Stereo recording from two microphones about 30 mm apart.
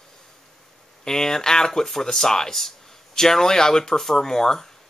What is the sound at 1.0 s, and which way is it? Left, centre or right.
Speech, centre.